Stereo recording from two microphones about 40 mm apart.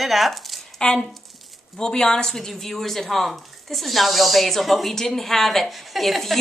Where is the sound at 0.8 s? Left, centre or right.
Centre.